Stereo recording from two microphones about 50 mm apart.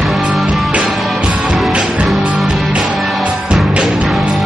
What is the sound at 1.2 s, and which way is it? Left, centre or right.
Music, centre.